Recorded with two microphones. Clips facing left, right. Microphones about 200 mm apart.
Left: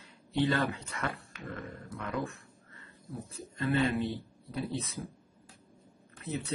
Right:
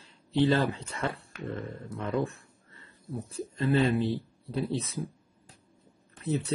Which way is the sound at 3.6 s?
30° right (ahead or behind).